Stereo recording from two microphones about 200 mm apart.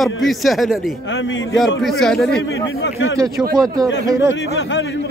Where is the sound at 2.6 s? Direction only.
65° left (ahead or behind).